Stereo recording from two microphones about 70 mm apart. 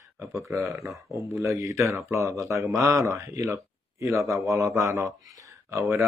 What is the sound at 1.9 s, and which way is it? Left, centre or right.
Speech, right.